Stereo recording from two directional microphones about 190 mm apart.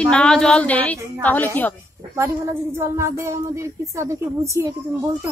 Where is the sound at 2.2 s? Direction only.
15° right (ahead or behind).